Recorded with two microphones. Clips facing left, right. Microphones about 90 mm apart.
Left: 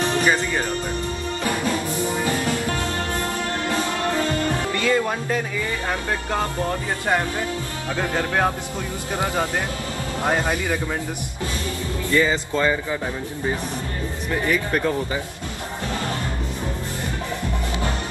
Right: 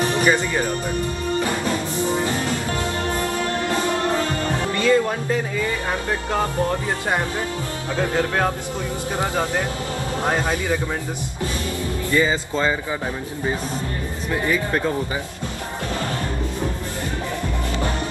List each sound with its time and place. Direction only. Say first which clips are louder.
0.2 s speech: right 2 dB; 5° right (ahead or behind)
4.7 s speech: right 5 dB; 20° right (ahead or behind)
12.1 s speech: even; 20° right (ahead or behind)
14.5 s speech: even; 20° right (ahead or behind)